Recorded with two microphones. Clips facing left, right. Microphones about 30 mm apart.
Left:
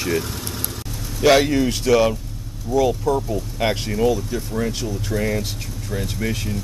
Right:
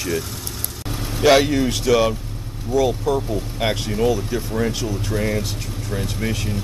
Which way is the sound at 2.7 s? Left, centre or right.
Right.